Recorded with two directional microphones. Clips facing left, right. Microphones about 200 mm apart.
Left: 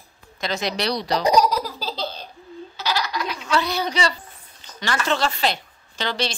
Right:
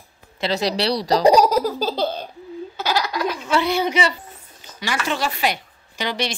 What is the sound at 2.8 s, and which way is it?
Baby laughter, 50° right (ahead or behind).